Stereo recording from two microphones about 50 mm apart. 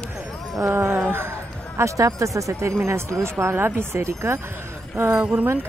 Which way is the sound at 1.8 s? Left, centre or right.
Right.